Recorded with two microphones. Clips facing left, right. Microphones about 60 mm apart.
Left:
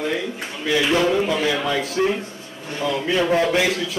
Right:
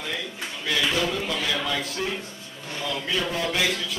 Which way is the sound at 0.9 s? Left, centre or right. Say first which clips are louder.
Left 8 dB; left.